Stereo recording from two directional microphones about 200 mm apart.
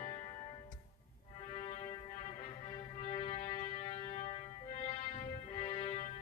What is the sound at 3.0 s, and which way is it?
Music, 35° left (ahead or behind).